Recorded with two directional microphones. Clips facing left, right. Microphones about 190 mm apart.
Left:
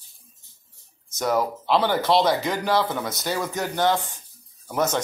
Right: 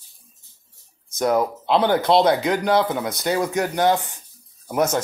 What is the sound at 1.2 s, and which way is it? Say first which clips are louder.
Speech: right 3 dB; 15° right (ahead or behind).